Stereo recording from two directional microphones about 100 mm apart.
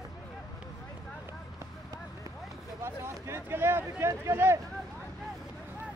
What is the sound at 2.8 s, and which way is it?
Speech, 25° right (ahead or behind).